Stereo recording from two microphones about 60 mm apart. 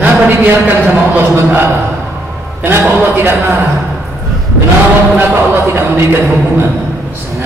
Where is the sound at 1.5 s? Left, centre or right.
Right.